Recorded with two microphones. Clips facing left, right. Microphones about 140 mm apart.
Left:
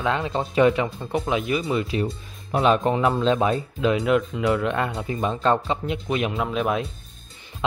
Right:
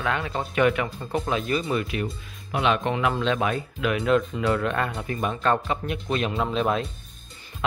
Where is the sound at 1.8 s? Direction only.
30° left (ahead or behind); by 6.8 s 10° left (ahead or behind).